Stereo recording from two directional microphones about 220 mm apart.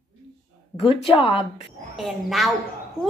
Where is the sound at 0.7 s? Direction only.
25° left (ahead or behind).